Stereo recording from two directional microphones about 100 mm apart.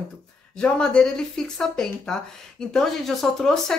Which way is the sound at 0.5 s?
10° left (ahead or behind).